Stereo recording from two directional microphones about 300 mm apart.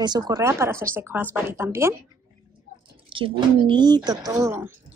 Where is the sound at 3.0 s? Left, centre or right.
Centre.